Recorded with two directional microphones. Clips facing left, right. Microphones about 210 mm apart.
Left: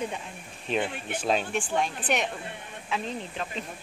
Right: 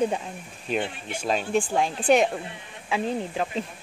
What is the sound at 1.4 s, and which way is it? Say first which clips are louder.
Speech: right 4 dB; 35° right (ahead or behind).